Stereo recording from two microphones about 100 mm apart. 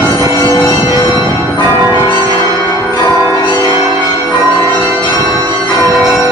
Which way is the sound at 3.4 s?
45° left (ahead or behind).